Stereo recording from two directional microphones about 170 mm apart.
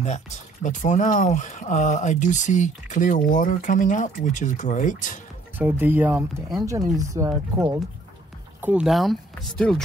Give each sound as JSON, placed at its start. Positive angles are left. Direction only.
{"t": 0.7, "sound": "speech", "side_deg": 45}
{"t": 5.6, "sound": "speech", "side_deg": -10}
{"t": 8.5, "sound": "speech", "side_deg": -10}